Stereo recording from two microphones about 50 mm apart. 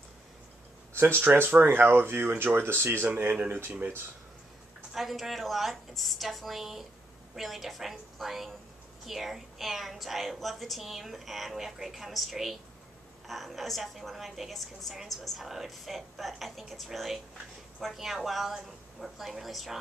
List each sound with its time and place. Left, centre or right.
1.2 s speech: right
3.1 s speech: right
4.9 s a woman's voice: centre